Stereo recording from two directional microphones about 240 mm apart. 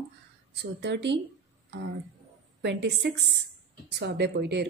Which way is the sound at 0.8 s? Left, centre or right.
Right.